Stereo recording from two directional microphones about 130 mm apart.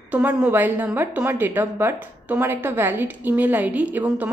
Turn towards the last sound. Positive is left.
turn(degrees=-15)  # may be behind; listen again after turning